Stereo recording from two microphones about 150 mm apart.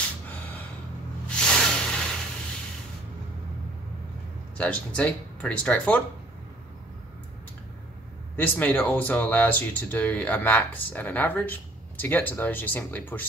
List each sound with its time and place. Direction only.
1.4 s spray: 5° left (ahead or behind)
4.6 s speech: 10° left (ahead or behind)
8.4 s speech: 10° left (ahead or behind)